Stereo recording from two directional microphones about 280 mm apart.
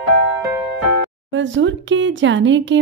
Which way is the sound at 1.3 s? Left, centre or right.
Right.